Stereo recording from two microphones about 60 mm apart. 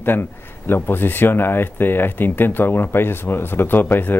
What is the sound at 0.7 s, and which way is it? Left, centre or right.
Speech, left.